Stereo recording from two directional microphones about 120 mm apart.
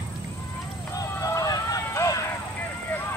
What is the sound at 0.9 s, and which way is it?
Run, 30° left (ahead or behind).